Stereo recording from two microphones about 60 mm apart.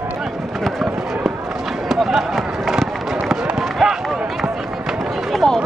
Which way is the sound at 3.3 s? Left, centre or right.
Centre.